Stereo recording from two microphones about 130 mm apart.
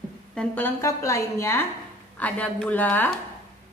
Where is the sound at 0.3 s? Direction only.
10° left (ahead or behind).